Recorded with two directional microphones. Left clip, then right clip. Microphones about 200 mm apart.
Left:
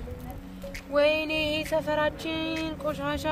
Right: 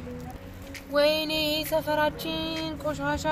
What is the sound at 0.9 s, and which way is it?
Speech, 10° left (ahead or behind).